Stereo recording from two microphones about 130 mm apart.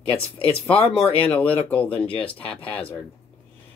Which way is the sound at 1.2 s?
10° left (ahead or behind).